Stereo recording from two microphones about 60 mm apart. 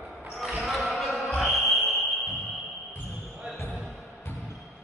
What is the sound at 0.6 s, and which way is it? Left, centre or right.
Basketball bounce, centre.